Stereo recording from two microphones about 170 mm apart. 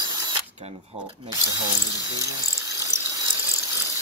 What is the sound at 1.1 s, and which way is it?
Speech, 20° right (ahead or behind).